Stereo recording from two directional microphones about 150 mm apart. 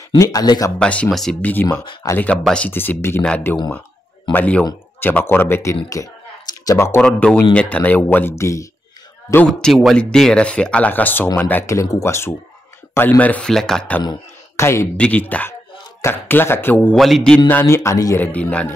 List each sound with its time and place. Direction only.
0.1 s speech: 25° left (ahead or behind)
0.7 s speech: 10° left (ahead or behind)
9.5 s a man's voice: centre (ahead or behind)
14.6 s a man's voice: 15° left (ahead or behind)
17.5 s speech: 15° left (ahead or behind)
18.2 s speech: 10° left (ahead or behind)